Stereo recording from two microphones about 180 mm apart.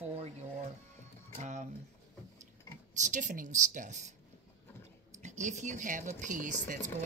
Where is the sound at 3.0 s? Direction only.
45° right (ahead or behind).